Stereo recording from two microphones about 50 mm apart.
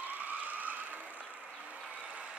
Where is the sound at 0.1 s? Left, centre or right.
Right.